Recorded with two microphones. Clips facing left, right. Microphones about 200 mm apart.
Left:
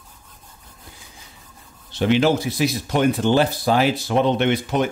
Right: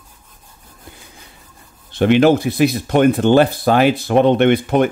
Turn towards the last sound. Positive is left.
turn(degrees=-55)  # may be behind; listen again after turning